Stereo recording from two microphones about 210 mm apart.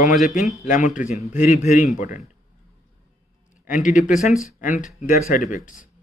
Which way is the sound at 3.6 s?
40° left (ahead or behind).